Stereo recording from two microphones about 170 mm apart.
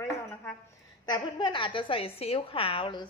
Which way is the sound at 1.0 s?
25° left (ahead or behind).